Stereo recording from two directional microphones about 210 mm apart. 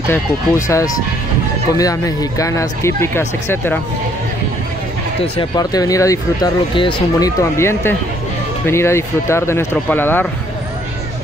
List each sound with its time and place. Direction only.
0.1 s speech: 15° left (ahead or behind)
5.2 s speech: 20° left (ahead or behind)